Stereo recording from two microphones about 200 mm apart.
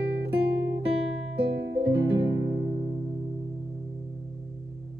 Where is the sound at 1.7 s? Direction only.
60° right (ahead or behind).